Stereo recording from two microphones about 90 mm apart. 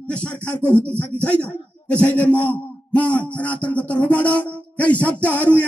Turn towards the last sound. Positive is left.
turn(degrees=15)  # may be behind; listen again after turning